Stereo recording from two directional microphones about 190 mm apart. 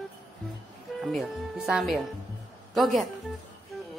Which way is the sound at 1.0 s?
Centre (ahead or behind).